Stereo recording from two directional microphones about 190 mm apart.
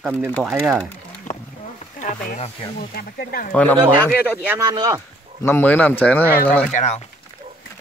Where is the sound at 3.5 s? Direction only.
5° left (ahead or behind).